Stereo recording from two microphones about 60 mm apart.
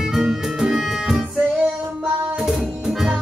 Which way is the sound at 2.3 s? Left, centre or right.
Centre.